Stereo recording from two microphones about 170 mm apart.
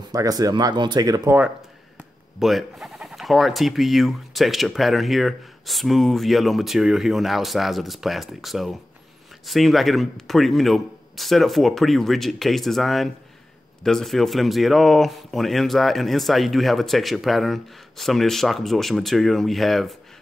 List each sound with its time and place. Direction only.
0.1 s speech: 20° right (ahead or behind)
2.0 s speech: centre (ahead or behind)